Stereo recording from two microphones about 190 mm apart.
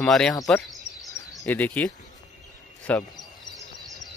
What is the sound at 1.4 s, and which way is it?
Speech, 10° left (ahead or behind).